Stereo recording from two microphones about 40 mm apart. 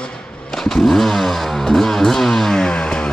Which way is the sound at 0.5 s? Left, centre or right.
Centre.